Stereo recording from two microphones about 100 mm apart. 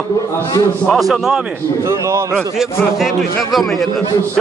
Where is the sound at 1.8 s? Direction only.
30° right (ahead or behind).